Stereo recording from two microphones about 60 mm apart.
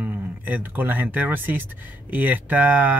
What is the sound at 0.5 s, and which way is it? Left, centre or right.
Speech, right.